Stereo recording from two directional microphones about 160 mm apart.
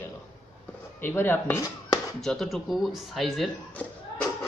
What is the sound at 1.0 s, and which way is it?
Speech, 15° left (ahead or behind).